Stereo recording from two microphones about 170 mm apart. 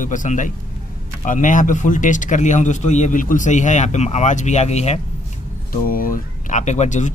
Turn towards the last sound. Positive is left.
turn(degrees=45)  # may be behind; listen again after turning